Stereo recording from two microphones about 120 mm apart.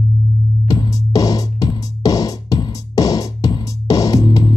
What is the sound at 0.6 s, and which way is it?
Music, 30° left (ahead or behind).